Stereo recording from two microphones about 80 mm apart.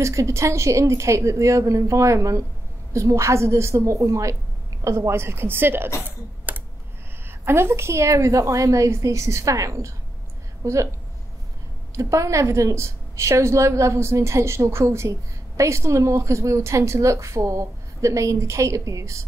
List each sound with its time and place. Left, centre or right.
0.0 s a woman's voice: right
6.0 s typing: right
7.2 s a woman's voice: right
11.9 s a woman's voice: right